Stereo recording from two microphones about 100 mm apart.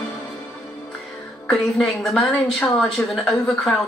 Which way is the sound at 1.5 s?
5° left (ahead or behind).